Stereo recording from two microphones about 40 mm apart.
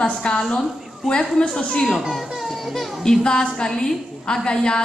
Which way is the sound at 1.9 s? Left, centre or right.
Centre.